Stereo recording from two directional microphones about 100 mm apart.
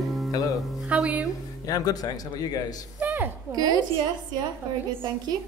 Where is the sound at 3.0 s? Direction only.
20° right (ahead or behind).